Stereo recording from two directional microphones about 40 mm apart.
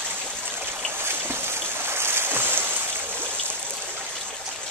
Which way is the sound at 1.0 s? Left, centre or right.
Right.